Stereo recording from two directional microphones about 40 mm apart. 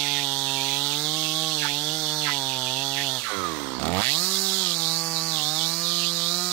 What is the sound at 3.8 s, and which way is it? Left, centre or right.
Chainsaw, left.